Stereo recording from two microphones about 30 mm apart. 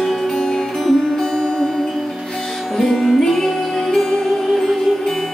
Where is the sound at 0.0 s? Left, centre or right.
Centre.